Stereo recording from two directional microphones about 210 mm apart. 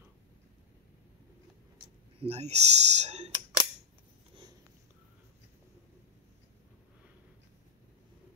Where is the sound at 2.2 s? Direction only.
30° right (ahead or behind).